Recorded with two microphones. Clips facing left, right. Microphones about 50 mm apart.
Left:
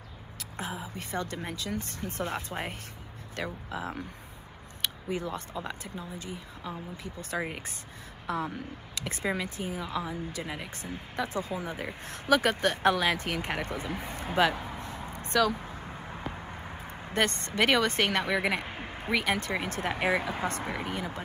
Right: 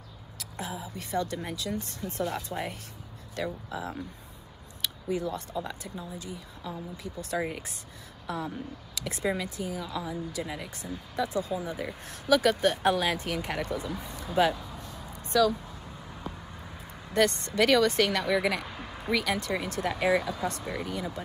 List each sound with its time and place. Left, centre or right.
0.6 s speech: left
7.3 s speech: left
8.3 s speech: left